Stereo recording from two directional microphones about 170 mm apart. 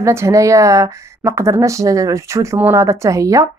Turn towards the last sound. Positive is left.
turn(degrees=-20)  # may be behind; listen again after turning